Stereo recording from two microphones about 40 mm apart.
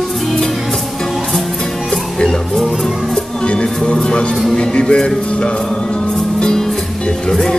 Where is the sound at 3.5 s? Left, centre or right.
Left.